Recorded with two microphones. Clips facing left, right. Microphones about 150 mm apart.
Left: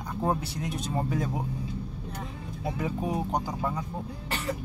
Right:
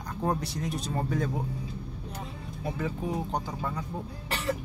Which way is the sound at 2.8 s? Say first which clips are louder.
Left 2 dB; 15° left (ahead or behind).